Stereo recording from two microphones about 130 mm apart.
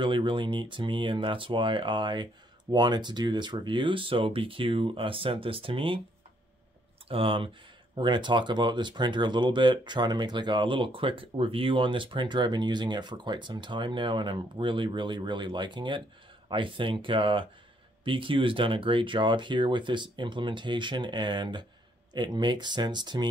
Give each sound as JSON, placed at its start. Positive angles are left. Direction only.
{"t": 0.0, "sound": "speech", "side_deg": -40}
{"t": 7.1, "sound": "speech", "side_deg": -45}